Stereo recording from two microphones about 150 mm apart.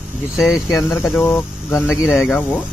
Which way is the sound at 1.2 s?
15° left (ahead or behind).